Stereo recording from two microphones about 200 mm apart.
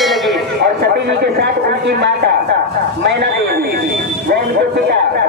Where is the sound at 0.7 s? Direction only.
55° right (ahead or behind).